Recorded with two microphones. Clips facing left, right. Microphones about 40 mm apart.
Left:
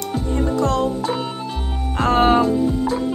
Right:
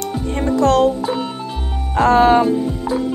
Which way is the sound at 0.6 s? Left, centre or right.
Right.